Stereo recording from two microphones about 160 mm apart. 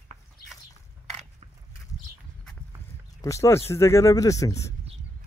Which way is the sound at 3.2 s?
20° left (ahead or behind).